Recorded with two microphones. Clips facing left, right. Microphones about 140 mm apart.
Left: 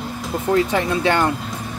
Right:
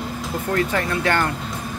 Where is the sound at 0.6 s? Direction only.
15° left (ahead or behind).